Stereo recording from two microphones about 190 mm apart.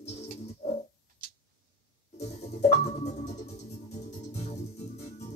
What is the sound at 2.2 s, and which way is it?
Music, 35° left (ahead or behind).